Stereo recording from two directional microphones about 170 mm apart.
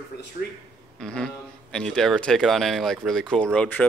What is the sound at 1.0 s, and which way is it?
A man's voice, 5° left (ahead or behind).